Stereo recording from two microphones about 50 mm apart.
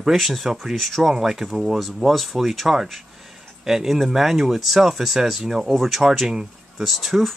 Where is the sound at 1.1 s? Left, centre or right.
Centre.